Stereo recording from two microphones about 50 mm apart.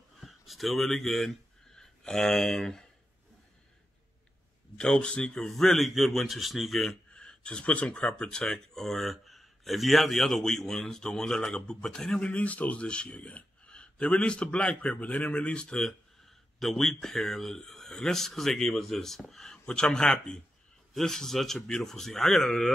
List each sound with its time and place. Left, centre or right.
0.2 s speech: centre
4.7 s speech: centre
5.4 s a man's voice: centre
7.2 s speech: centre
12.3 s a man's voice: left
16.5 s speech: centre
19.6 s speech: centre